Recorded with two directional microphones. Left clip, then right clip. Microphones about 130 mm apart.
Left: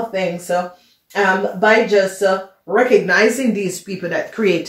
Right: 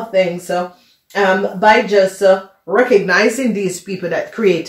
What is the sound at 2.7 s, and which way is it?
Speech, 45° right (ahead or behind).